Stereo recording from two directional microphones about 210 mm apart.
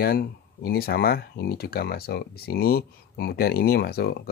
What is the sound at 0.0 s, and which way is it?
Speech, 45° left (ahead or behind).